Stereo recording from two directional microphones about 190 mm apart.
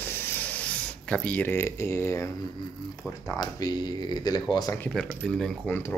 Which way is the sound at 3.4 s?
20° left (ahead or behind).